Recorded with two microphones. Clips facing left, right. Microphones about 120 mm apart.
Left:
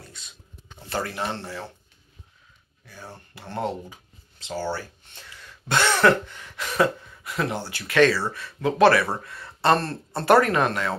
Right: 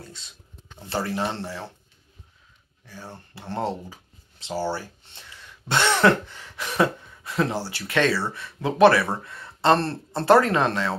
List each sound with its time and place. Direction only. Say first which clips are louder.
0.8 s speech: right 2 dB; 25° right (ahead or behind)
3.3 s speech: right 1 dB; 30° right (ahead or behind)